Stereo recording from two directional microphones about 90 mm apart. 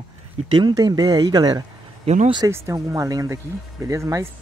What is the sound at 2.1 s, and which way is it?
Speech, 90° right.